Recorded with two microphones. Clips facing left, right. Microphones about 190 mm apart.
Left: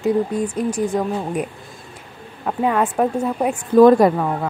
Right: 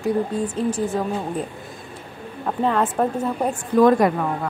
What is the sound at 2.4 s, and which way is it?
Speech, 10° left (ahead or behind).